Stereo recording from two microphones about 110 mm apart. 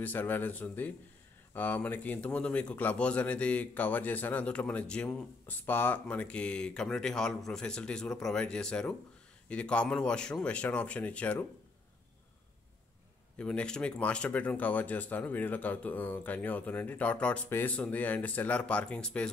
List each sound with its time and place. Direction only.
0.0 s speech: 15° left (ahead or behind)
13.4 s speech: 10° left (ahead or behind)